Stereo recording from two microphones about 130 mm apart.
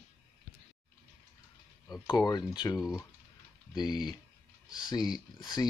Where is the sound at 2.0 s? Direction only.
30° left (ahead or behind).